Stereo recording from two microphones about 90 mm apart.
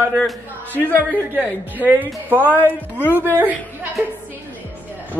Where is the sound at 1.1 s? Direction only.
20° right (ahead or behind).